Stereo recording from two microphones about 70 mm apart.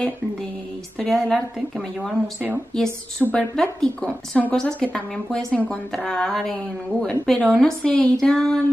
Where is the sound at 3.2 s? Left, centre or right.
Centre.